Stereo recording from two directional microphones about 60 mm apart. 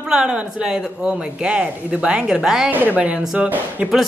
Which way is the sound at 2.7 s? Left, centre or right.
Right.